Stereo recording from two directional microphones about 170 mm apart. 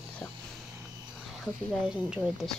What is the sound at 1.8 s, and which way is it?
Speech, 5° right (ahead or behind).